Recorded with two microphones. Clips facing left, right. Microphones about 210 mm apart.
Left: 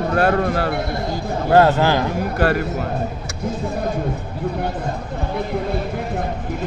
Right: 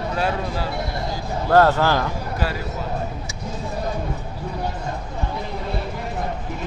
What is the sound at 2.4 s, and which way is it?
Speech, 60° left (ahead or behind).